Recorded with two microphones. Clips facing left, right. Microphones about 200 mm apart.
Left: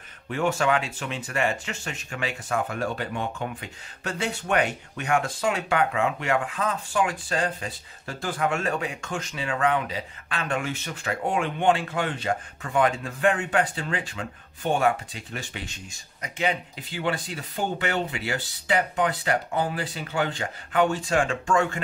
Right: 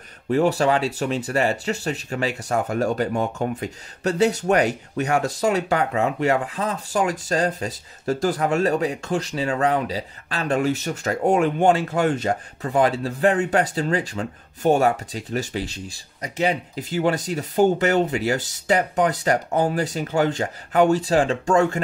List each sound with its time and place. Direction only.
0.3 s speech: 35° right (ahead or behind)